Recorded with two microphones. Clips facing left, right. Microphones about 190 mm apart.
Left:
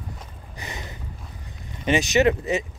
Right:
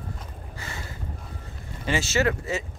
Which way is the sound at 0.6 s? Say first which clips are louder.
Left 3 dB; 20° left (ahead or behind).